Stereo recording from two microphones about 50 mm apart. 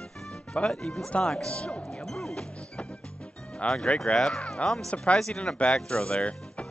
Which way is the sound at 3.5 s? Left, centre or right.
Centre.